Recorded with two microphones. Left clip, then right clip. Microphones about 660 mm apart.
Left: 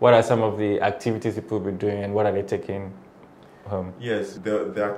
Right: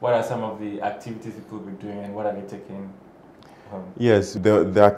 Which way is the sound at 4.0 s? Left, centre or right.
Right.